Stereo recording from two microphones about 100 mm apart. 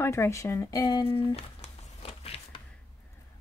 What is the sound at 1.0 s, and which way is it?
Music, 65° left (ahead or behind).